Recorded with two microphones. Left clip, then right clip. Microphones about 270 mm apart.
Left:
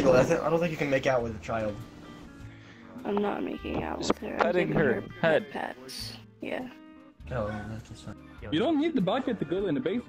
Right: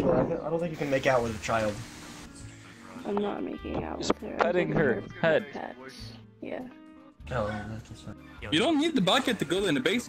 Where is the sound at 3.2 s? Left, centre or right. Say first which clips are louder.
Left 2 dB; centre.